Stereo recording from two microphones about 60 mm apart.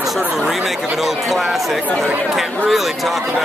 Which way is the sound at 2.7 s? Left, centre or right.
Centre.